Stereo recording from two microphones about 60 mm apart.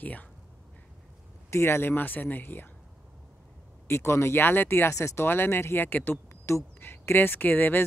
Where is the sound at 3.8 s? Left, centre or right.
Left.